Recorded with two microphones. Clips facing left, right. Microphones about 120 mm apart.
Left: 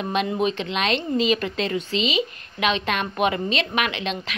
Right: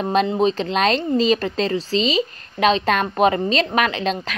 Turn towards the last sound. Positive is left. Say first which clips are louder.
# right 5 dB
turn(degrees=-40)  # may be behind; listen again after turning